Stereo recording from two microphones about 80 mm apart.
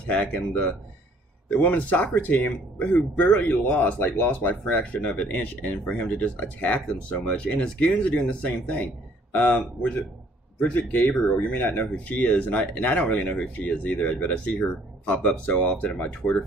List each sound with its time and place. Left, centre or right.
0.0 s speech: centre